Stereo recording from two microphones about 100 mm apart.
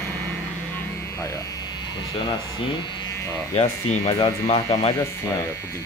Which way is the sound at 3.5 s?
90° left.